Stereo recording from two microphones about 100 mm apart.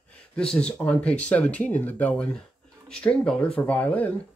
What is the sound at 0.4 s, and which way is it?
Speech, 10° left (ahead or behind).